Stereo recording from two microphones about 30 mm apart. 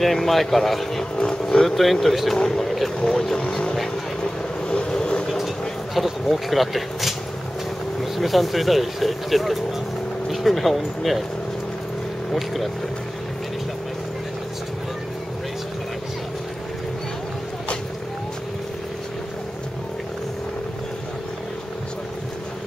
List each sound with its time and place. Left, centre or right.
0.0 s speech: centre
1.4 s speech: left
1.8 s speech: centre
2.3 s speech: centre
4.2 s vehicle: left
6.2 s speech: centre